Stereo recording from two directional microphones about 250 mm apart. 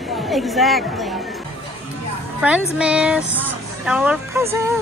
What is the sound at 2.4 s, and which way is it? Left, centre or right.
A woman's voice, centre.